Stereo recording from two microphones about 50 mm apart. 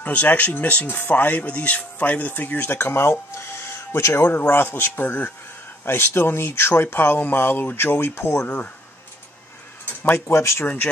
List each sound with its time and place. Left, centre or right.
0.0 s speech: left
4.3 s speech: left
5.9 s speech: left
8.5 s speech: left
9.8 s speech: left